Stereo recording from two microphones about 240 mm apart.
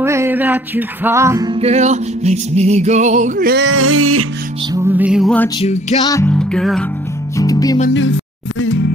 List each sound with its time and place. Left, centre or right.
0.0 s music: centre; by 3.6 s right
3.6 s a sound: right
4.7 s music: centre
5.6 s music: left
6.0 s music: centre
7.3 s music: centre
7.9 s music: left